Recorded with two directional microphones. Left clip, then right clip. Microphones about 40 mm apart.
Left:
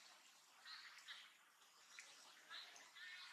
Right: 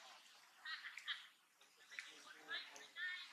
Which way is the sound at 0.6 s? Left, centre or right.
Right.